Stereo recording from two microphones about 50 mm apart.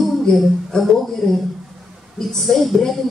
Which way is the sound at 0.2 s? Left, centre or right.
Centre.